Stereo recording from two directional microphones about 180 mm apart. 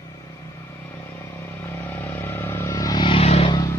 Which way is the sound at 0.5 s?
15° left (ahead or behind).